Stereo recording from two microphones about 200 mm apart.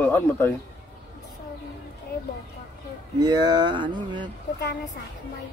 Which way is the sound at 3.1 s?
20° right (ahead or behind).